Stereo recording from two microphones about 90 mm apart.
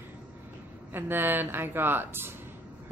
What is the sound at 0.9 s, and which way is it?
Speech, 25° right (ahead or behind).